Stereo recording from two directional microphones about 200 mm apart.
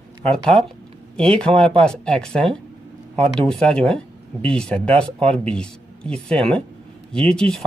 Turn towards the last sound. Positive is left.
turn(degrees=5)  # may be behind; listen again after turning